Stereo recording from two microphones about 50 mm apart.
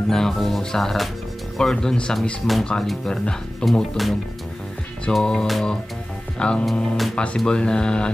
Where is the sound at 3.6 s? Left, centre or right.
Centre.